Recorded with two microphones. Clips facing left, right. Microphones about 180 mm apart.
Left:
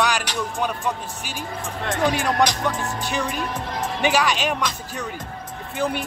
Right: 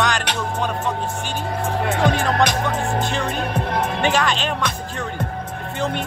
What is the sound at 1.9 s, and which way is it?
Speech, 65° right (ahead or behind).